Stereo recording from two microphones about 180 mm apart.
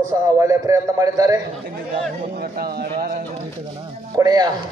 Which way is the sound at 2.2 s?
55° right (ahead or behind).